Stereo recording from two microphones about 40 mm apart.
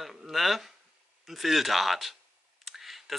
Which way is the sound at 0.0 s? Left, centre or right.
Centre.